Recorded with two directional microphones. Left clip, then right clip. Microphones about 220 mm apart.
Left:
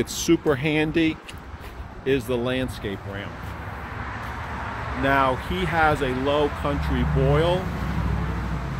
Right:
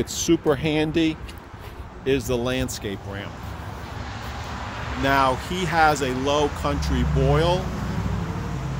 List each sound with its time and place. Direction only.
0.0 s speech: 5° left (ahead or behind)
5.0 s speech: centre (ahead or behind)